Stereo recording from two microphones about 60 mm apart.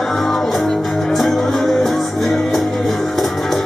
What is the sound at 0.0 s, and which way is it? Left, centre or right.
Music, centre.